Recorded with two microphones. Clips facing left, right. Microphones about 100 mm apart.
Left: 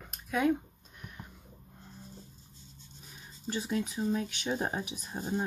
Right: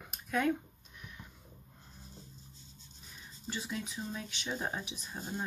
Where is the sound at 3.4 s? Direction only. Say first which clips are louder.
Left 7 dB; 45° left (ahead or behind).